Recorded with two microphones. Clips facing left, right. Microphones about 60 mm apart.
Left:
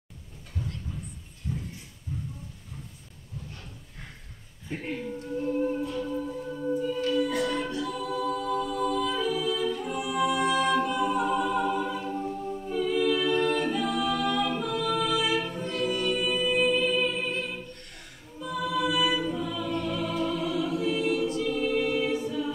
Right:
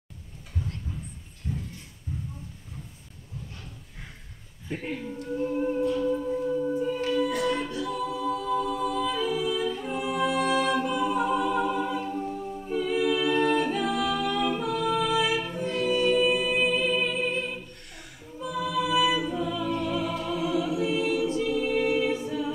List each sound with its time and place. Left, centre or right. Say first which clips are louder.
1.5 s a sound: even; right
4.6 s speech: right 1 dB; centre
5.4 s music: right 2 dB; centre
7.1 s a capella: even; centre
10.1 s music: even; centre
10.6 s music: even; centre
12.6 s a capella: even; centre
15.3 s music: right 1 dB; centre
21.4 s a capella: right 1 dB; centre